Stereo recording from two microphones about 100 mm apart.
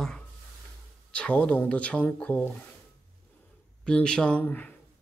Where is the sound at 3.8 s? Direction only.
10° left (ahead or behind).